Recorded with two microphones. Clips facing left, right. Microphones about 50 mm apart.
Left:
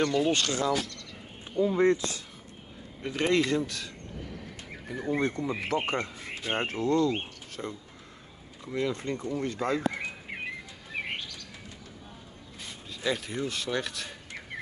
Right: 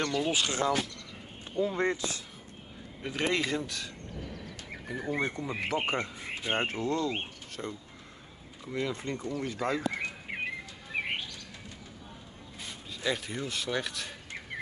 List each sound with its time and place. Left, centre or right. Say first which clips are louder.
0.0 s speech: left 4 dB; centre
0.5 s speech: left 1 dB; right
1.5 s speech: left 5 dB; centre
3.0 s speech: left 4 dB; centre
6.2 s speech: even; centre
6.5 s speech: left 3 dB; centre
13.0 s speech: left 2 dB; centre